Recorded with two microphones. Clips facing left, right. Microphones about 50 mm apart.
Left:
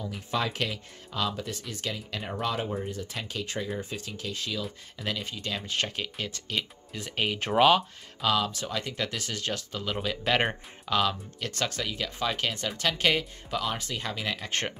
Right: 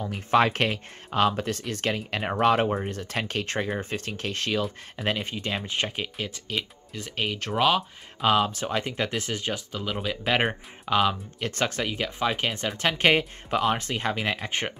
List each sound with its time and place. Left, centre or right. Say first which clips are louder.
0.0 s speech: right 9 dB; right
4.9 s speech: right 5 dB; right
5.7 s speech: right 2 dB; centre
6.1 s speech: right 2 dB; centre
8.2 s speech: right 4 dB; right
9.7 s speech: right 1 dB; centre
10.9 s speech: right 4 dB; right